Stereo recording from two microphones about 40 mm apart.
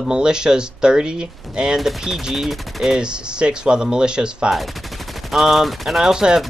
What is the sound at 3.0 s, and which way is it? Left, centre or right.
Speech, right.